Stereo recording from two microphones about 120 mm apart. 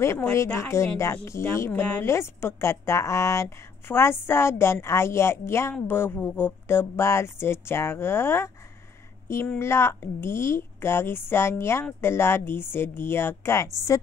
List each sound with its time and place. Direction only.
0.3 s a woman's voice: 25° left (ahead or behind)
9.6 s a woman's voice: 20° left (ahead or behind)